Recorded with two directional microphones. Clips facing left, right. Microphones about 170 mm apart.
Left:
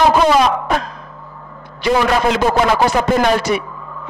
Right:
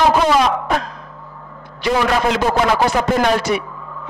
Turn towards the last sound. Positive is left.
turn(degrees=10)  # may be behind; listen again after turning